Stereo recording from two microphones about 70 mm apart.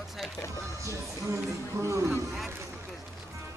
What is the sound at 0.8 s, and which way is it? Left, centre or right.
Speech, right.